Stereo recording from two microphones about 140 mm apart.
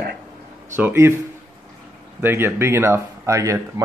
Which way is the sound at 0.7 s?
15° right (ahead or behind).